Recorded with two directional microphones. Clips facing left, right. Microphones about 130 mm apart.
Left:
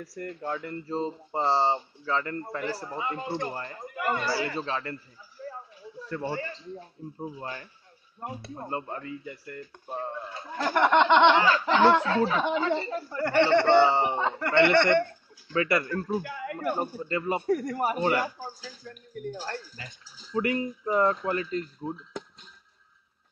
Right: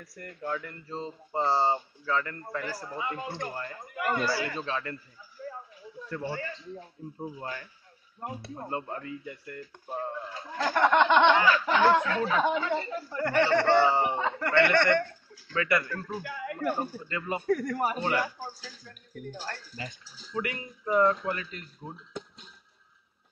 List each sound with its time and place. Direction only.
0.0 s speech: 30° left (ahead or behind)
6.3 s speech: 30° left (ahead or behind)
17.7 s speech: 20° left (ahead or behind)
20.3 s speech: 30° left (ahead or behind)